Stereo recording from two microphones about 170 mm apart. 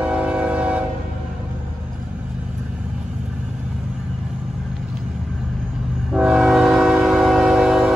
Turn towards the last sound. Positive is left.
turn(degrees=0)  # may be behind; listen again after turning